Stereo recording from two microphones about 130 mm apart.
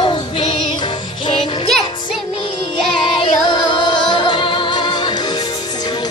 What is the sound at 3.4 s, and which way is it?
Music, 35° left (ahead or behind).